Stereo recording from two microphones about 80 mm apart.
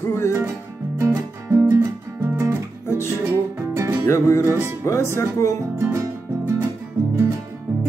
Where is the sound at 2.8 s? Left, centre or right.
Left.